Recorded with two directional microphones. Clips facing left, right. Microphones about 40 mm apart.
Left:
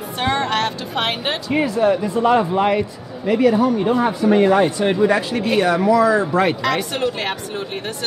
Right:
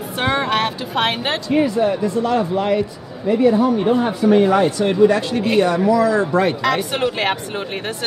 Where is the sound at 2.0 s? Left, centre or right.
Left.